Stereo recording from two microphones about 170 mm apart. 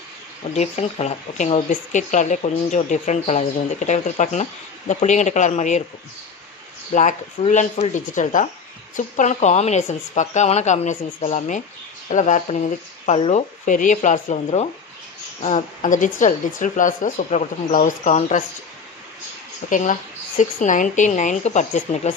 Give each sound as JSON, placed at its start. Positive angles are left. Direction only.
{"t": 0.6, "sound": "speech", "side_deg": 40}
{"t": 6.9, "sound": "speech", "side_deg": 45}
{"t": 19.7, "sound": "speech", "side_deg": 45}